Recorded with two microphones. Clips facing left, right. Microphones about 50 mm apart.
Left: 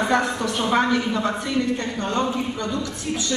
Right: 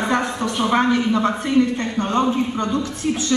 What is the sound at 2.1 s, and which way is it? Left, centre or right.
Speech, right.